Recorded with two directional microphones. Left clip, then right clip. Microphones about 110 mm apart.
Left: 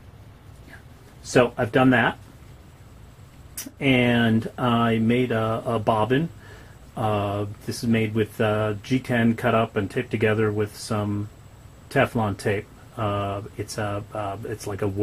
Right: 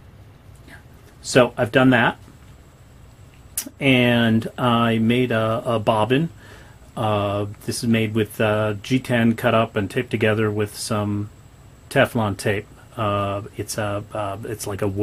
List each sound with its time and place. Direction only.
1.2 s speech: 25° right (ahead or behind)
3.8 s speech: 30° right (ahead or behind)